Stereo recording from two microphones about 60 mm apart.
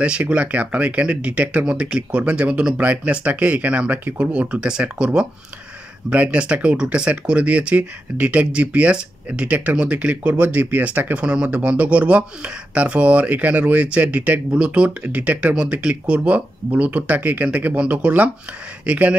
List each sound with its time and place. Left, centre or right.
0.0 s speech: right